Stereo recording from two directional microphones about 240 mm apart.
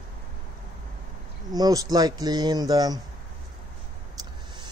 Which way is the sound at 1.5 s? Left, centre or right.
Centre.